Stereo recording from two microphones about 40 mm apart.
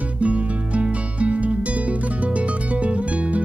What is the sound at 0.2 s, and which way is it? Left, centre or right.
Music, right.